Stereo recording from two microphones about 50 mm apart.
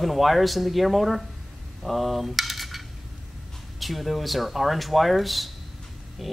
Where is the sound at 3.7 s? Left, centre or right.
Centre.